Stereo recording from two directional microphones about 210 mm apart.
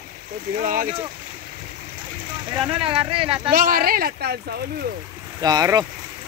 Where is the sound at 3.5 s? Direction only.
45° right (ahead or behind).